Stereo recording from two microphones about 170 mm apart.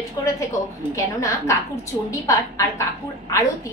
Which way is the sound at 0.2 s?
20° left (ahead or behind).